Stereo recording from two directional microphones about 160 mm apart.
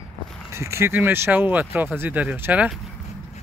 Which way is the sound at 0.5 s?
15° right (ahead or behind).